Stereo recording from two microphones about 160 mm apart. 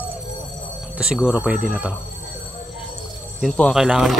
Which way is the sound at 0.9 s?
5° right (ahead or behind).